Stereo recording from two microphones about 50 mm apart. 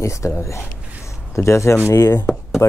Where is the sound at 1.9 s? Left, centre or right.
Left.